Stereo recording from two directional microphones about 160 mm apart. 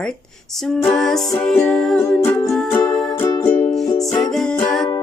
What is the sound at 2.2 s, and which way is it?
Music, 15° left (ahead or behind).